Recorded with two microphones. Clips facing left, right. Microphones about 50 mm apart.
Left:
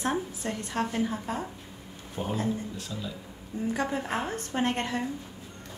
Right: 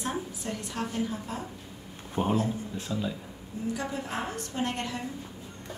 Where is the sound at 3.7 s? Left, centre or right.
Left.